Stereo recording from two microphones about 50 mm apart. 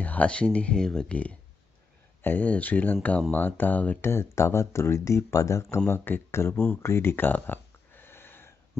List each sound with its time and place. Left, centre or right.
0.0 s speech: left
0.7 s speech: centre
1.1 s speech: left
4.0 s speech: left
5.9 s speech: left
7.3 s a sound: left